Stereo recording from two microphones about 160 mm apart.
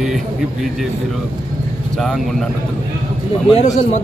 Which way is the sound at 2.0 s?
Centre (ahead or behind).